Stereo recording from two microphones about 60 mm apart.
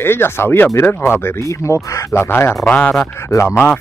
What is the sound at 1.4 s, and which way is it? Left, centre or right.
Speech, left.